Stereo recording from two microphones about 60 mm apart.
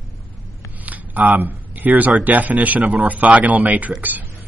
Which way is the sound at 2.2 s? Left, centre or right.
Right.